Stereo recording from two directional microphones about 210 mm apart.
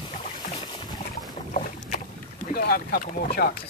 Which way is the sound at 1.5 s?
35° left (ahead or behind).